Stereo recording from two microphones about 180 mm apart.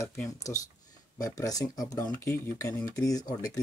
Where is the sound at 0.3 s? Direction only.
20° left (ahead or behind).